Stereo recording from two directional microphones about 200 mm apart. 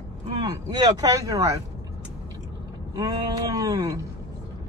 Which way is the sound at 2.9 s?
20° right (ahead or behind).